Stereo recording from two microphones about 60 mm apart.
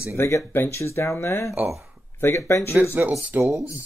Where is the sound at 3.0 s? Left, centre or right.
Right.